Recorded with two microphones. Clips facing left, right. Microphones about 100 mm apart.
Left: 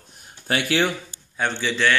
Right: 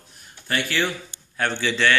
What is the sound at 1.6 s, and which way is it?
Speech, 10° left (ahead or behind).